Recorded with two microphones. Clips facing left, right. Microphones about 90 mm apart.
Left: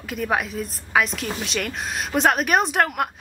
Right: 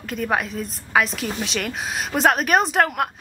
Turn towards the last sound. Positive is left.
turn(degrees=0)  # may be behind; listen again after turning